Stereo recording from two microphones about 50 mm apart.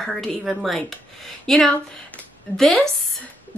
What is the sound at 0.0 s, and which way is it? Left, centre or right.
A woman's voice, centre.